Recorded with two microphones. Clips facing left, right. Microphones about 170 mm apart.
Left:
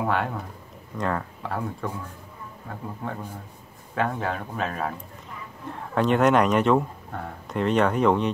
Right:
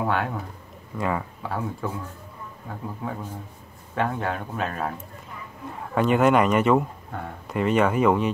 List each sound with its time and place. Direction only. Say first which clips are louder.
0.0 s speech: even; centre (ahead or behind)